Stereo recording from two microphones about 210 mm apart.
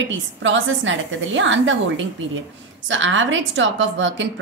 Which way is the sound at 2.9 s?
65° right (ahead or behind).